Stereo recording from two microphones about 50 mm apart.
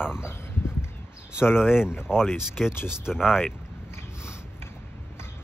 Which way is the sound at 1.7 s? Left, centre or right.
Centre.